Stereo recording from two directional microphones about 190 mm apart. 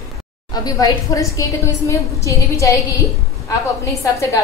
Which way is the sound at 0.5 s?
20° left (ahead or behind).